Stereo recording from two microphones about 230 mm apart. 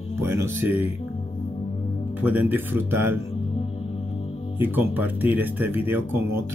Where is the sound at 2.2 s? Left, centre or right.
Centre.